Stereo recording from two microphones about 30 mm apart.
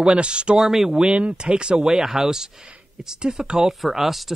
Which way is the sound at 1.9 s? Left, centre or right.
Centre.